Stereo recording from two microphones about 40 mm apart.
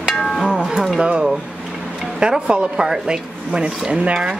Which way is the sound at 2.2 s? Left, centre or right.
Right.